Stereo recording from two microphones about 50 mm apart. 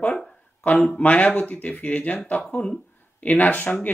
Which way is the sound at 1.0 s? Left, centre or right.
Left.